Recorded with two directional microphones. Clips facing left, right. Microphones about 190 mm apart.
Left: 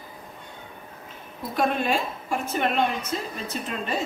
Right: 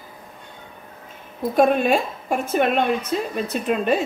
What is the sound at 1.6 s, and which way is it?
A woman's voice, 50° right (ahead or behind).